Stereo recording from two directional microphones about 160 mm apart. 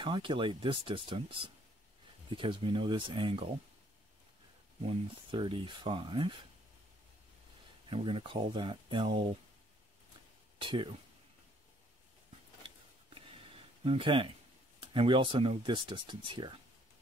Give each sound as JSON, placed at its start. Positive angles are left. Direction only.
{"t": 0.0, "sound": "speech", "side_deg": -30}
{"t": 4.8, "sound": "speech", "side_deg": -30}
{"t": 7.9, "sound": "speech", "side_deg": -35}
{"t": 10.6, "sound": "speech", "side_deg": -30}
{"t": 13.8, "sound": "speech", "side_deg": -35}